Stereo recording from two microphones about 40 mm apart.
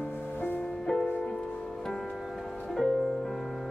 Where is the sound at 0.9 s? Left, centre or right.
Centre.